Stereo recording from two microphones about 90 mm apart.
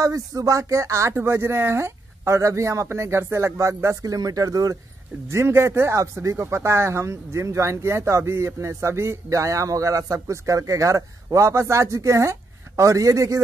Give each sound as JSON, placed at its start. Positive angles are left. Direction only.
{"t": 0.0, "sound": "speech", "side_deg": -40}
{"t": 5.3, "sound": "speech", "side_deg": -30}